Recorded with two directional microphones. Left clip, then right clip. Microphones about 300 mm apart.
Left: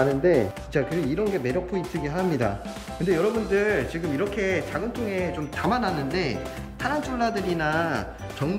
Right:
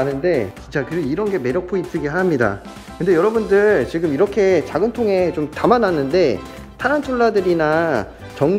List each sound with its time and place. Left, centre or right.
0.1 s speech: centre